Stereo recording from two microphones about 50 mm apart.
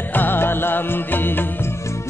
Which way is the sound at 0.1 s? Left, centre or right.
Left.